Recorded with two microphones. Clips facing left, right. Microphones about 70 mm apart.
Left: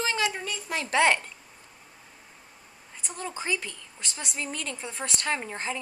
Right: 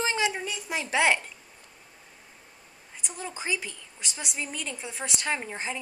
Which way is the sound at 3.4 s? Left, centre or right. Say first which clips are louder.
Even; centre.